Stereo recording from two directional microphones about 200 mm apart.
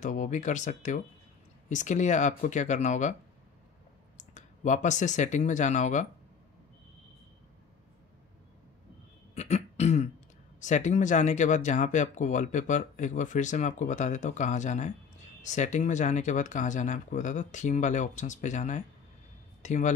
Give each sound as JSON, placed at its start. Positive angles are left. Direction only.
{"t": 0.0, "sound": "speech", "side_deg": 40}
{"t": 4.2, "sound": "speech", "side_deg": 40}
{"t": 9.3, "sound": "beatboxing", "side_deg": 35}
{"t": 10.6, "sound": "speech", "side_deg": 35}